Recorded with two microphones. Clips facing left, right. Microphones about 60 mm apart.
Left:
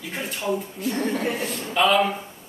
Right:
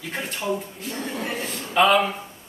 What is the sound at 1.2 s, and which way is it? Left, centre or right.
Speech, centre.